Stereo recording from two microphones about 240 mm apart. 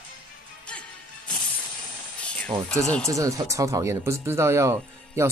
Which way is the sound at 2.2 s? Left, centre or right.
Centre.